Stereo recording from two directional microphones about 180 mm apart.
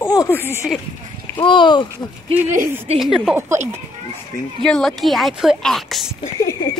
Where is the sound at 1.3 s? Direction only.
25° left (ahead or behind).